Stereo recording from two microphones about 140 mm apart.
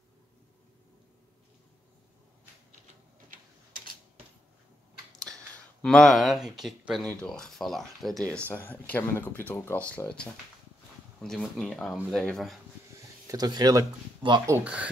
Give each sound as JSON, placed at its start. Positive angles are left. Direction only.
{"t": 5.2, "sound": "speech", "side_deg": 5}
{"t": 8.5, "sound": "speech", "side_deg": 15}
{"t": 13.3, "sound": "speech", "side_deg": -30}
{"t": 14.5, "sound": "speech", "side_deg": -10}